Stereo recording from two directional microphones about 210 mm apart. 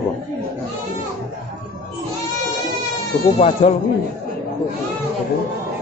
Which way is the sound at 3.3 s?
30° left (ahead or behind).